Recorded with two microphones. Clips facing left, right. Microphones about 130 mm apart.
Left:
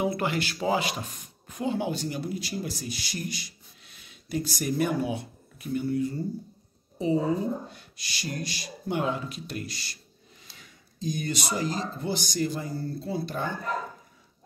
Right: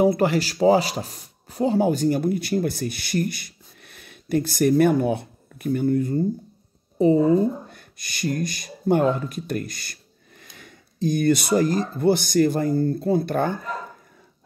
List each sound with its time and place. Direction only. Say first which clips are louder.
0.0 s speech: right 9 dB; 40° right (ahead or behind)
7.6 s speech: even; 50° right (ahead or behind)